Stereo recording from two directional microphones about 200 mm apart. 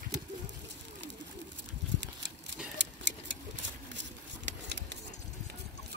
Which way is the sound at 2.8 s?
60° right (ahead or behind).